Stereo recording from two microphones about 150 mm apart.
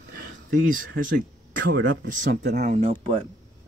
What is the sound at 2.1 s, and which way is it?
Speech, 75° right (ahead or behind).